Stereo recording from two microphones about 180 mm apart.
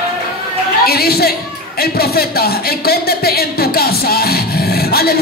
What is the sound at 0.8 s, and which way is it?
Speech, 60° left (ahead or behind).